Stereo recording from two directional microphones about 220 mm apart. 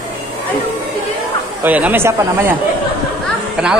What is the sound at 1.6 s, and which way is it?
Speech, 5° right (ahead or behind).